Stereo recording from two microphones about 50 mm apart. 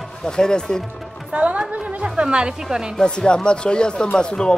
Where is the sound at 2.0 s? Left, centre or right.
Centre.